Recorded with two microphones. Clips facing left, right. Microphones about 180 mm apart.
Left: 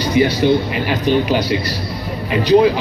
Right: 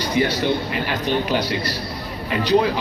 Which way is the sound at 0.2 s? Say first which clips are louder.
Left 7 dB; 10° left (ahead or behind).